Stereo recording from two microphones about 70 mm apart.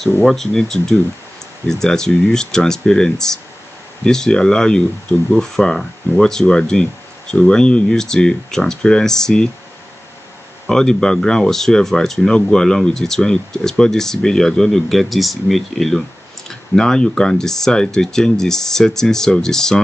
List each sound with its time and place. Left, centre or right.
0.2 s speech: centre
10.7 s speech: centre